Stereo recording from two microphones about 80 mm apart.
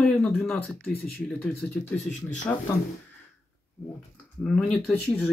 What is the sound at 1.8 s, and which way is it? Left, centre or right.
Speech, centre.